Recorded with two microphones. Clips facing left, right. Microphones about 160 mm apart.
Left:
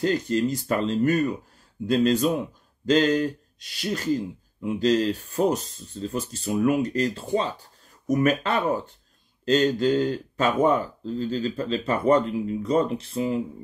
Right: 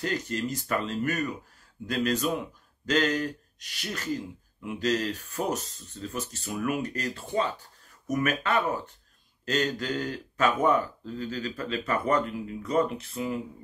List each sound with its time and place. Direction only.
0.0 s speech: 30° left (ahead or behind)